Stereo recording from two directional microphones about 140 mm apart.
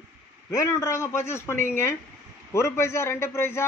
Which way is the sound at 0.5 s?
20° left (ahead or behind).